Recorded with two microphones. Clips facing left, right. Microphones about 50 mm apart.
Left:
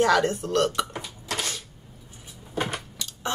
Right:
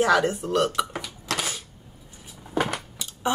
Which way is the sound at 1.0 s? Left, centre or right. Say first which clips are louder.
Right 3 dB; right.